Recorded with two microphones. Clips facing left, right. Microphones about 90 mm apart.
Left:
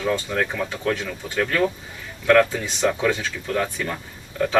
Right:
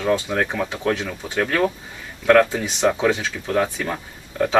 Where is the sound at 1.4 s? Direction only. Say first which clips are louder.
Right 1 dB; 5° right (ahead or behind).